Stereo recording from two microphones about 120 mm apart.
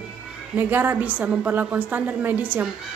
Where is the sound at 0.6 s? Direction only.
15° right (ahead or behind).